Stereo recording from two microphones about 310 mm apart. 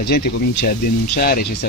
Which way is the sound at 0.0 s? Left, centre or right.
Left.